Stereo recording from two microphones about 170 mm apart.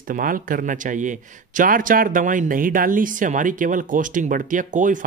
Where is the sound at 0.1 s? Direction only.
55° right (ahead or behind).